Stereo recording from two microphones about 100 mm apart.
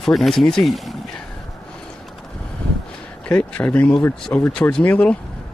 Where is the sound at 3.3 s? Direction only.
15° left (ahead or behind).